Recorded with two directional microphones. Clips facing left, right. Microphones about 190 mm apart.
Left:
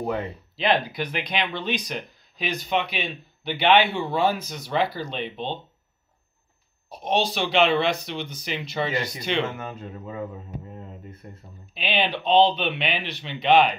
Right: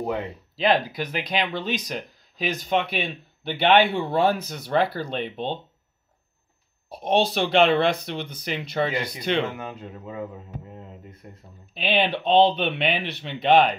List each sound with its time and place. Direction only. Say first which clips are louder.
0.6 s speech: right 1 dB; 40° right (ahead or behind)
7.0 s speech: right 3 dB; 55° right (ahead or behind)
9.6 s speech: even; 15° right (ahead or behind)
11.2 s speech: left 1 dB; 15° right (ahead or behind)
11.9 s speech: right 1 dB; 60° right (ahead or behind)